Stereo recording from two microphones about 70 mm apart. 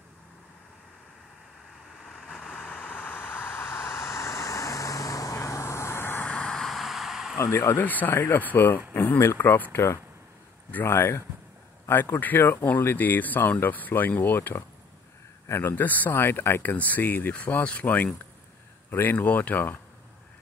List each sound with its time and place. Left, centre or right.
2.0 s vehicle: centre; by 6.2 s left
6.2 s vehicle: centre
7.3 s speech: left
7.7 s speech: left
15.4 s a man's voice: left
15.7 s speech: left